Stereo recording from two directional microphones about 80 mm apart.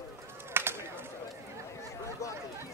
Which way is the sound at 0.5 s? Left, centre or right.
Right.